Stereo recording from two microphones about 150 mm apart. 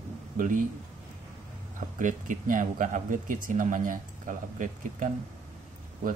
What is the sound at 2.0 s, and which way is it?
Speech, 60° right (ahead or behind).